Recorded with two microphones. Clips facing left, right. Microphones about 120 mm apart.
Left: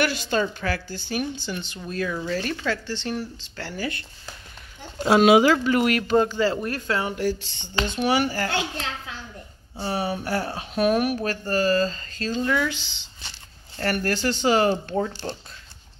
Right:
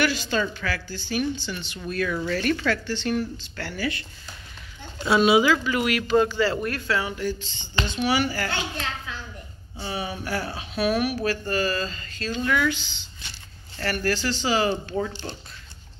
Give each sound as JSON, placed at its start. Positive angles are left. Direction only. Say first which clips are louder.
{"t": 0.0, "sound": "speech", "louder": "even", "side_deg": 50}
{"t": 0.4, "sound": "speech", "louder": "left 2 dB", "side_deg": 35}
{"t": 0.8, "sound": "speech", "louder": "right 2 dB", "side_deg": 50}
{"t": 1.9, "sound": "speech", "louder": "right 1 dB", "side_deg": 25}
{"t": 3.6, "sound": "speech", "louder": "right 1 dB", "side_deg": 40}
{"t": 5.4, "sound": "speech", "louder": "left 3 dB", "side_deg": 50}
{"t": 6.5, "sound": "speech", "louder": "even", "side_deg": 25}
{"t": 6.9, "sound": "speech", "louder": "left 1 dB", "side_deg": 40}
{"t": 7.2, "sound": "speech", "louder": "left 3 dB", "side_deg": 65}
{"t": 8.0, "sound": "speech", "louder": "left 2 dB", "side_deg": 45}
{"t": 13.7, "sound": "speech", "louder": "left 1 dB", "side_deg": 45}
{"t": 15.0, "sound": "speech", "louder": "left 2 dB", "side_deg": 35}